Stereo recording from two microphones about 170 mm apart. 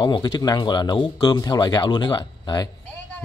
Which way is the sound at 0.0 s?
25° left (ahead or behind).